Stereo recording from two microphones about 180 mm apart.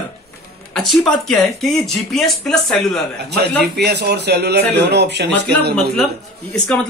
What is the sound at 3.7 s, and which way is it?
Speech, 65° right (ahead or behind).